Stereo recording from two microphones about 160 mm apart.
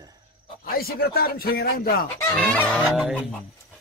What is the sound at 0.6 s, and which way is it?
Speech, 70° left (ahead or behind).